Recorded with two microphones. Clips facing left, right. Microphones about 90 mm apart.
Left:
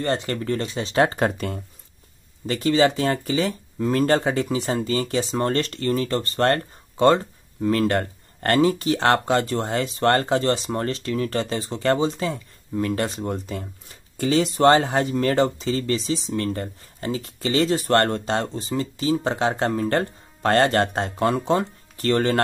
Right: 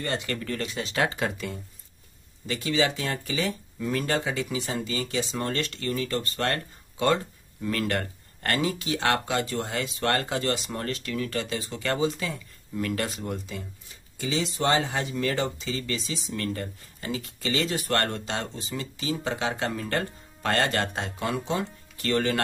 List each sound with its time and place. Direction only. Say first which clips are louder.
0.0 s speech: left 6 dB; 35° left (ahead or behind)
13.5 s speech: left 6 dB; 50° left (ahead or behind)